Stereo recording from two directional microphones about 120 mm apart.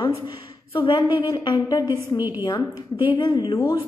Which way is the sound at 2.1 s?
20° right (ahead or behind).